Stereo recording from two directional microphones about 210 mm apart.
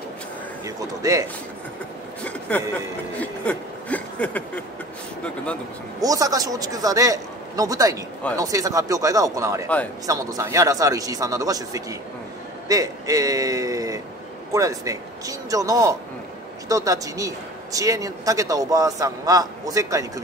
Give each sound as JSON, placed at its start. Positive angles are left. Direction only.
{"t": 0.7, "sound": "a man's voice", "side_deg": -15}
{"t": 3.2, "sound": "a sound", "side_deg": 5}
{"t": 5.2, "sound": "speech", "side_deg": 5}
{"t": 5.9, "sound": "a man's voice", "side_deg": -15}